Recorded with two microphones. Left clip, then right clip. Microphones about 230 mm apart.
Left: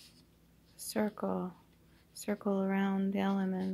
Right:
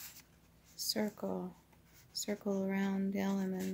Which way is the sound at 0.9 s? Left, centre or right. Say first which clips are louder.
Left 8 dB; centre.